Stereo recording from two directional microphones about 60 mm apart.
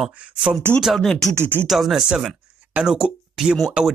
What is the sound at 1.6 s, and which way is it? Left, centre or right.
Speech, centre.